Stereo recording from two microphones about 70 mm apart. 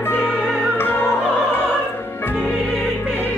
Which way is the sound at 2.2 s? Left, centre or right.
Left.